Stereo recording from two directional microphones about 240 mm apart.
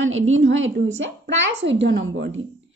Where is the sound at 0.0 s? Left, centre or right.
Right.